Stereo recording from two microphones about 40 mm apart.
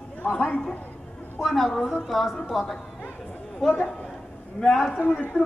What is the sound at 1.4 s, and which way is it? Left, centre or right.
A woman's voice, centre.